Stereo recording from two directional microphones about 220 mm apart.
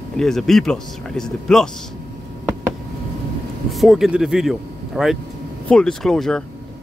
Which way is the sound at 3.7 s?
Centre (ahead or behind).